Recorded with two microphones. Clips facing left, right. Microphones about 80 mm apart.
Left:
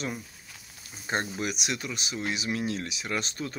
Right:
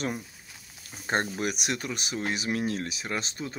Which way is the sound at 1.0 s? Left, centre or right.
Right.